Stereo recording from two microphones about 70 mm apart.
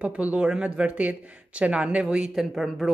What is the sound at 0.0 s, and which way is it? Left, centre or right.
Speech, centre.